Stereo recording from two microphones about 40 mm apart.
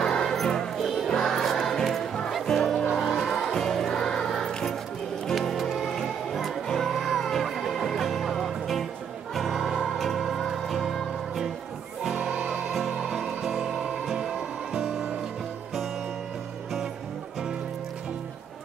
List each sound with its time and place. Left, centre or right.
0.0 s music: centre
0.8 s music: centre
6.7 s music: centre
12.1 s music: right
14.1 s music: centre